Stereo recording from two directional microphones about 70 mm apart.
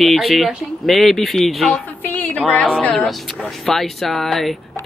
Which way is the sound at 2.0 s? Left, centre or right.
Left.